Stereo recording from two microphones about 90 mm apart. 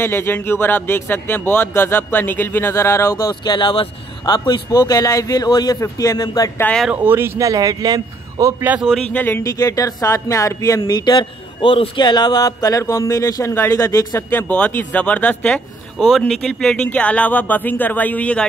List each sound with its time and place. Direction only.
0.0 s speech: 25° left (ahead or behind)
3.3 s speech: 55° left (ahead or behind)
4.3 s speech: 50° left (ahead or behind)
4.7 s a man's voice: 40° left (ahead or behind)
6.9 s speech: 20° right (ahead or behind)
7.3 s a man's voice: 40° right (ahead or behind)
8.6 s speech: 10° right (ahead or behind)
9.1 s speech: 20° left (ahead or behind)
9.4 s a man's voice: 40° left (ahead or behind)
11.1 s a man's voice: 65° left (ahead or behind); by 14.4 s 30° left (ahead or behind)
14.5 s speech: 15° left (ahead or behind)
16.0 s speech: centre (ahead or behind)